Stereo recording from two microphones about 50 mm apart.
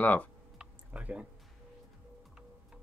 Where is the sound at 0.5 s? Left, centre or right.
Centre.